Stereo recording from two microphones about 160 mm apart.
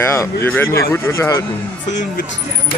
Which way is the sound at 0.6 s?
75° left (ahead or behind).